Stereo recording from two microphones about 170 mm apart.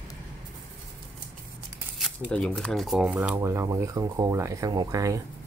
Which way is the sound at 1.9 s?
Centre (ahead or behind).